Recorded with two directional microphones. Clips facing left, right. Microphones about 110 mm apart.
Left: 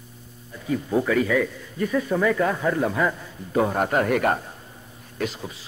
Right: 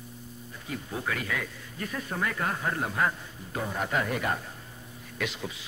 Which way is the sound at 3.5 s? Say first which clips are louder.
Left 9 dB; 60° left (ahead or behind).